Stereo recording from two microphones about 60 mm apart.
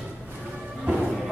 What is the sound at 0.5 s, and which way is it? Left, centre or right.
Music, right.